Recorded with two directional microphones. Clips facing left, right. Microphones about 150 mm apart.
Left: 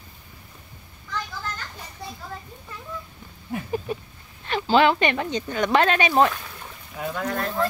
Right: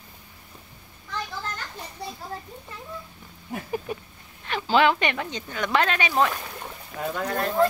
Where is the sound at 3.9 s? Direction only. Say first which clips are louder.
Left 3 dB; 15° right (ahead or behind).